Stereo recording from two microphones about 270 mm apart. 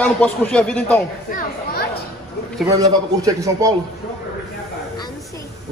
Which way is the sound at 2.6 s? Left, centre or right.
Centre.